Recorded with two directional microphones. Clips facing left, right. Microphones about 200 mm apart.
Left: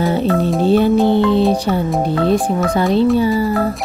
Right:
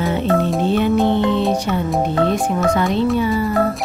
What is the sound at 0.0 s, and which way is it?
Music, 35° left (ahead or behind).